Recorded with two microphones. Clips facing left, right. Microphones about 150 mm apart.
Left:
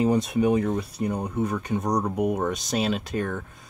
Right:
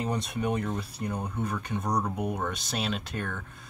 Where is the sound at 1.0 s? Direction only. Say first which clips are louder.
Left 5 dB; 15° left (ahead or behind).